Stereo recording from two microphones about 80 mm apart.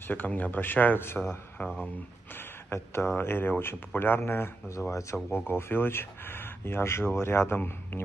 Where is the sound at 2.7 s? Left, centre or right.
Left.